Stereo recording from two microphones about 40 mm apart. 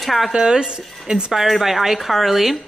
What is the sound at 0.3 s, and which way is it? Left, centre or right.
Speech, centre.